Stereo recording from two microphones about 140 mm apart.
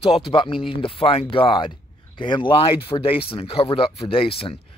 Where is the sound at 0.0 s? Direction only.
40° left (ahead or behind).